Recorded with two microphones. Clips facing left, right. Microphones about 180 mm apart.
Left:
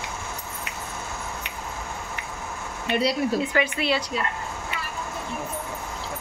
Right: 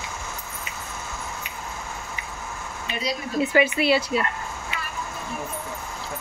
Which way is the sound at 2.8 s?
65° left (ahead or behind).